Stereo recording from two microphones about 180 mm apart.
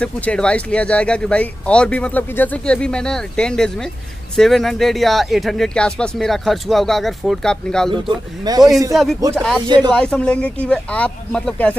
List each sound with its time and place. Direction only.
0.0 s speech: 5° left (ahead or behind)
8.5 s a man's voice: 20° right (ahead or behind)
8.9 s speech: centre (ahead or behind)